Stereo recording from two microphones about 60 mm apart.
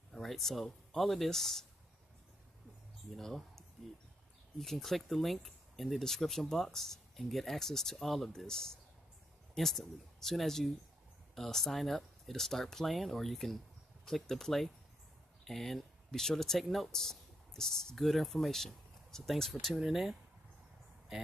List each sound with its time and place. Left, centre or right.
0.1 s speech: centre
3.1 s speech: centre